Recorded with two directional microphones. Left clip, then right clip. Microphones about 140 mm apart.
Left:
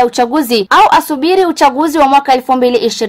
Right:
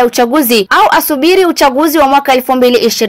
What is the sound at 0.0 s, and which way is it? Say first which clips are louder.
A woman's voice: right 2 dB; 15° right (ahead or behind).